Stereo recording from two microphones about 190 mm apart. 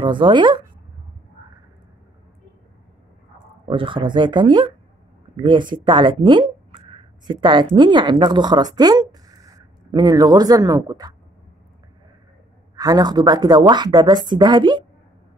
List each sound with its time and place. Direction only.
0.0 s a woman's voice: 25° right (ahead or behind)
3.6 s a woman's voice: 25° right (ahead or behind)
12.7 s a woman's voice: 20° right (ahead or behind)